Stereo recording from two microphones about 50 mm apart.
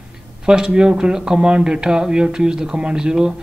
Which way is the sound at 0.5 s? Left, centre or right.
Centre.